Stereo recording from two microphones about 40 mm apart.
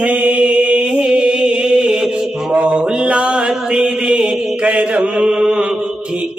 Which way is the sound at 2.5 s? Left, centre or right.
Centre.